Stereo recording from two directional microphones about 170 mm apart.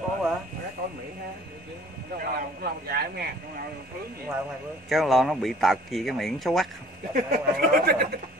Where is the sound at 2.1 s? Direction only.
60° right (ahead or behind).